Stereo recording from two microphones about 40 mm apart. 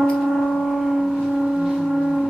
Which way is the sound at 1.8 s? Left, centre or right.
Centre.